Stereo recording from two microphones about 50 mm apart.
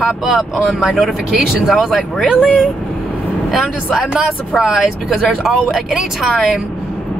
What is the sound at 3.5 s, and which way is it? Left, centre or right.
Speech, centre.